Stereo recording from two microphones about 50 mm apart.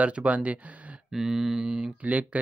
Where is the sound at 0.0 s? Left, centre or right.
Right.